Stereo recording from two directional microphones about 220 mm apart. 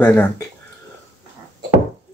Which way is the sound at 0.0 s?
10° left (ahead or behind).